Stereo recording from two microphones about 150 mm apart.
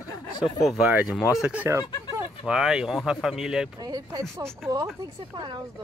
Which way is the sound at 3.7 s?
25° right (ahead or behind).